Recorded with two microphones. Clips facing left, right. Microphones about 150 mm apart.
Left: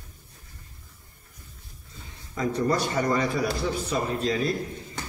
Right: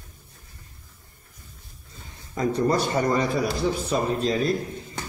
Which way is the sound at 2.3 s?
35° right (ahead or behind).